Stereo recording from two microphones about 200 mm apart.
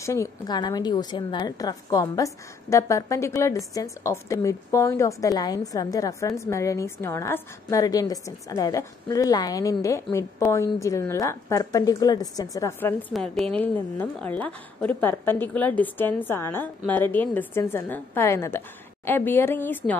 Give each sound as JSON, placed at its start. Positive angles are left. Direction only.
{"t": 0.0, "sound": "a woman's voice", "side_deg": 15}
{"t": 13.1, "sound": "a woman's voice", "side_deg": 0}